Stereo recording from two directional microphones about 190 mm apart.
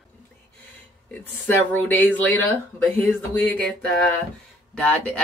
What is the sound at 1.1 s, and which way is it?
Speech, 10° left (ahead or behind).